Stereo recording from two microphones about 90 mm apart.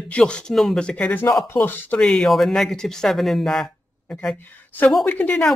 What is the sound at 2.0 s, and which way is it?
Speech, centre (ahead or behind).